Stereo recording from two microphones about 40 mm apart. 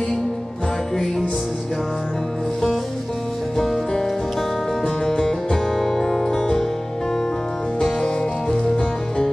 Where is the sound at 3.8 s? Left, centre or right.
Centre.